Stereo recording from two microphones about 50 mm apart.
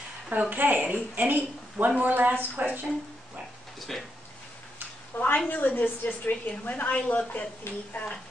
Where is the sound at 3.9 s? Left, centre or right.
Centre.